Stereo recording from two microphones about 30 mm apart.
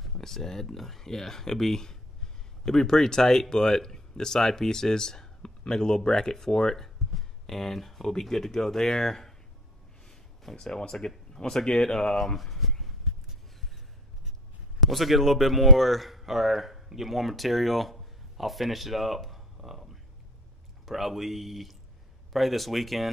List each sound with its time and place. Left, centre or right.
0.2 s speech: centre
7.0 s a sound: centre
7.4 s speech: centre
10.0 s a sound: centre
11.3 s speech: left
12.4 s speech: centre
14.8 s speech: centre